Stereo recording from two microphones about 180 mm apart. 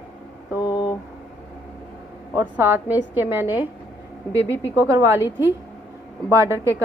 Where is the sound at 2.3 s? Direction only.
10° right (ahead or behind).